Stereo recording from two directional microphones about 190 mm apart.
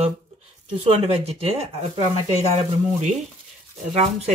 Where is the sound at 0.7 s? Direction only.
35° right (ahead or behind).